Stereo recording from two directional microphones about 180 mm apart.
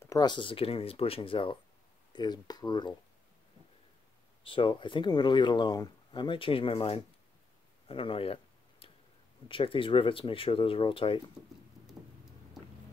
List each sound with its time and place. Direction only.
0.0 s speech: 20° left (ahead or behind)
4.4 s speech: 30° left (ahead or behind)
7.9 s a sound: 30° left (ahead or behind)
9.5 s speech: 30° left (ahead or behind)